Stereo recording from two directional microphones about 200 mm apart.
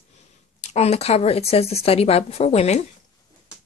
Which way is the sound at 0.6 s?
30° left (ahead or behind).